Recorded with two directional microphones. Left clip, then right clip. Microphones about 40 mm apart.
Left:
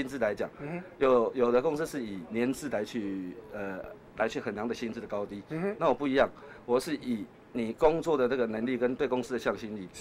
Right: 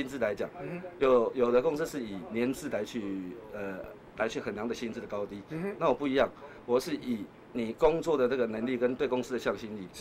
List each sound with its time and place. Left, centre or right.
0.0 s a man's voice: left